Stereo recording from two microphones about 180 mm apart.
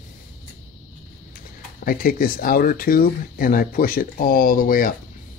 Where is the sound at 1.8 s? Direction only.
55° left (ahead or behind).